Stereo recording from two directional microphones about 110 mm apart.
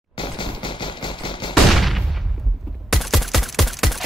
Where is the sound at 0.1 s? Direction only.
50° left (ahead or behind).